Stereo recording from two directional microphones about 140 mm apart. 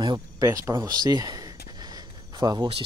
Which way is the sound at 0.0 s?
30° right (ahead or behind).